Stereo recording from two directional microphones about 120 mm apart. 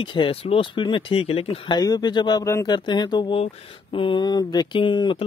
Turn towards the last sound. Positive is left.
turn(degrees=40)  # may be behind; listen again after turning